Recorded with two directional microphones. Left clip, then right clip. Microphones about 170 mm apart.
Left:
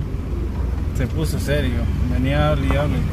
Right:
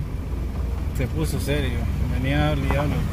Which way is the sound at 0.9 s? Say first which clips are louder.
Left 2 dB; 20° right (ahead or behind).